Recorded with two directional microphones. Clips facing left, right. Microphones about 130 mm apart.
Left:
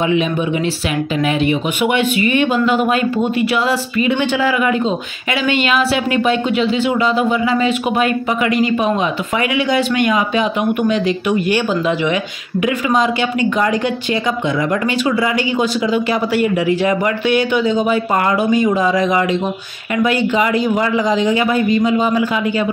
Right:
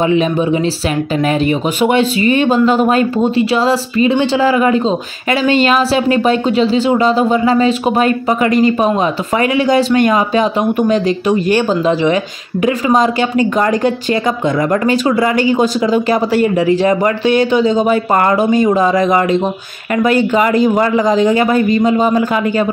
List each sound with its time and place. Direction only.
1.8 s a man's voice: 35° right (ahead or behind)